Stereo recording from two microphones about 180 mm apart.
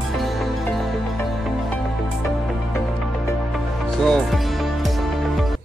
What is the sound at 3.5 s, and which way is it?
Music, centre (ahead or behind).